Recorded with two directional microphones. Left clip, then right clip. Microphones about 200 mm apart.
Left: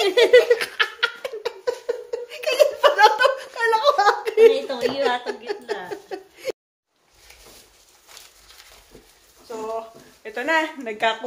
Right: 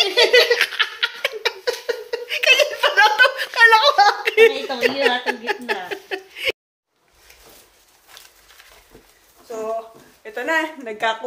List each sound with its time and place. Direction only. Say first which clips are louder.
0.0 s giggle: even; 40° left (ahead or behind)
0.6 s laughter: right 3 dB; centre (ahead or behind)
1.9 s a sound: right 3 dB; 10° left (ahead or behind)
10.2 s speech: even; 10° left (ahead or behind)